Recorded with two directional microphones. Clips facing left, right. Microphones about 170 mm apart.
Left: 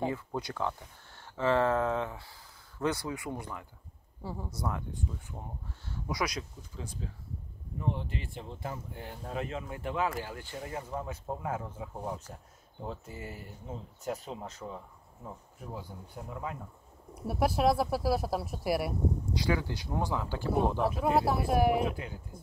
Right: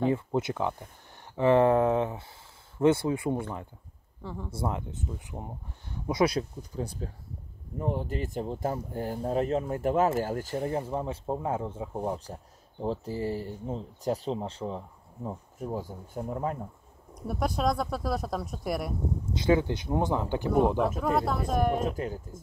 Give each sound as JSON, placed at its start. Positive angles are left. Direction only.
{"t": 0.1, "sound": "speech", "side_deg": -20}
{"t": 4.2, "sound": "speech", "side_deg": 10}
{"t": 4.5, "sound": "speech", "side_deg": -25}
{"t": 15.2, "sound": "speech", "side_deg": -45}
{"t": 17.1, "sound": "speech", "side_deg": 5}
{"t": 19.3, "sound": "speech", "side_deg": -20}
{"t": 21.0, "sound": "speech", "side_deg": 5}
{"t": 21.8, "sound": "speech", "side_deg": -40}